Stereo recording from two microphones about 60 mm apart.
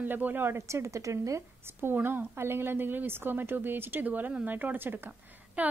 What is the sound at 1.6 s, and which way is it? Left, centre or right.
A woman's voice, right.